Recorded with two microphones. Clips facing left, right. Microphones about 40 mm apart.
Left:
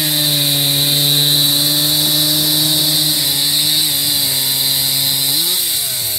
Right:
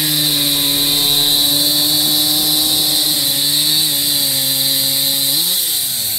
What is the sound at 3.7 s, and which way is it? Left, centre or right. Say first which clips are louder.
Chainsaw: even; left.